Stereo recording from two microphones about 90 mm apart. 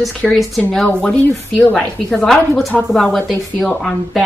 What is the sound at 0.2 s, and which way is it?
Speech, 5° right (ahead or behind).